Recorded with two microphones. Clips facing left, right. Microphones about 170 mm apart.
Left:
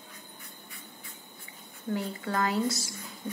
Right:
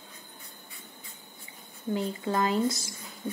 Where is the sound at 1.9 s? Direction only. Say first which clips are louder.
Right 2 dB; 20° right (ahead or behind).